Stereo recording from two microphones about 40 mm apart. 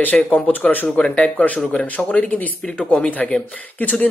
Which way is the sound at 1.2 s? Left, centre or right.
Left.